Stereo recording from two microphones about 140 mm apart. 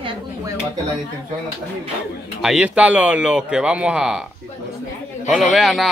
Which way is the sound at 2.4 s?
5° right (ahead or behind).